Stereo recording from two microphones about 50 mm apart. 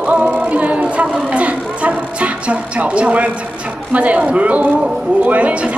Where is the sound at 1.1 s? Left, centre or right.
Right.